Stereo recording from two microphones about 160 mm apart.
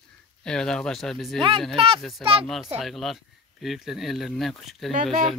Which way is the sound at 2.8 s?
Centre (ahead or behind).